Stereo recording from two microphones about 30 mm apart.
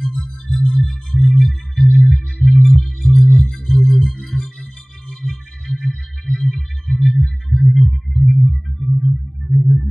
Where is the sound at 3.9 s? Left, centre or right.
Centre.